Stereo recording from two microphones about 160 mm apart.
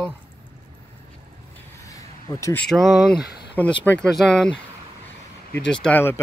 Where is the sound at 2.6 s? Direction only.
Centre (ahead or behind).